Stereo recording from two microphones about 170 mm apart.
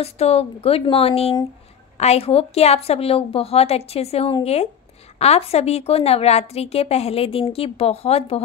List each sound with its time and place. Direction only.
0.0 s a woman's voice: 40° left (ahead or behind)